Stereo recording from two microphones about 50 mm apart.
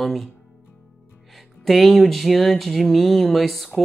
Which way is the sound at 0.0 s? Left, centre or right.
Centre.